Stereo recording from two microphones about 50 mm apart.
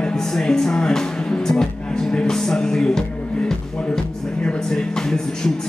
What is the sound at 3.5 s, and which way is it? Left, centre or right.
Music, centre.